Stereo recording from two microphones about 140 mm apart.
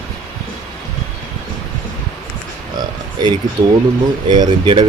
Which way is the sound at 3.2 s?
30° right (ahead or behind).